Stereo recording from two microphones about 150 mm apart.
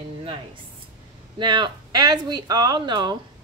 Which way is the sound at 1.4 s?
30° right (ahead or behind).